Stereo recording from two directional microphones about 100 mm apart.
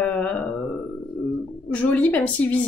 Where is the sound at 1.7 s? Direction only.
15° left (ahead or behind).